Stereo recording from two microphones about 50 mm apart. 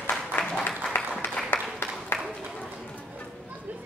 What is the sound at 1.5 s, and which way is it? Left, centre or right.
Applause, left.